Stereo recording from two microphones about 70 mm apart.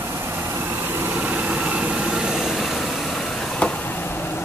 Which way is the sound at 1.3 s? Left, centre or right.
Centre.